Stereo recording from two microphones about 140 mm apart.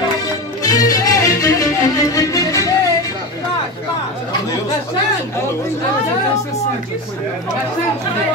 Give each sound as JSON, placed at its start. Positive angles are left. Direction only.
{"t": 0.6, "sound": "music", "side_deg": 25}